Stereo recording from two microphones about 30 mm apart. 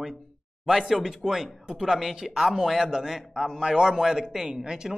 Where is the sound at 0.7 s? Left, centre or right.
Centre.